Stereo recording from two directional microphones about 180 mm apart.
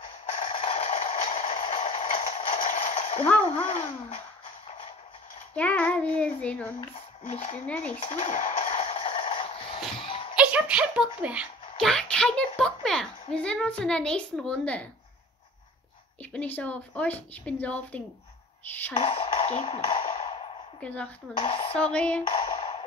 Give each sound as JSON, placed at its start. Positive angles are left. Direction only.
{"t": 0.4, "sound": "a sound", "side_deg": 35}
{"t": 5.5, "sound": "a woman's voice", "side_deg": 5}
{"t": 7.2, "sound": "speech", "side_deg": 35}
{"t": 7.6, "sound": "a woman's voice", "side_deg": 10}
{"t": 7.9, "sound": "a sound", "side_deg": 40}
{"t": 9.9, "sound": "music", "side_deg": 30}
{"t": 10.3, "sound": "a child's voice", "side_deg": -5}
{"t": 16.2, "sound": "a woman's voice", "side_deg": 10}
{"t": 18.9, "sound": "a sound", "side_deg": 35}
{"t": 20.8, "sound": "a woman's voice", "side_deg": 5}
{"t": 21.4, "sound": "speech", "side_deg": 30}
{"t": 21.9, "sound": "a woman's voice", "side_deg": 5}
{"t": 22.3, "sound": "a sound", "side_deg": 30}